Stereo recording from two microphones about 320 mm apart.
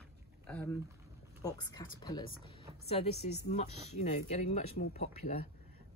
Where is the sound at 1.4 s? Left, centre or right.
Centre.